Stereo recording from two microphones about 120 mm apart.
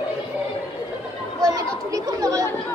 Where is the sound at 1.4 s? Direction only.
30° right (ahead or behind).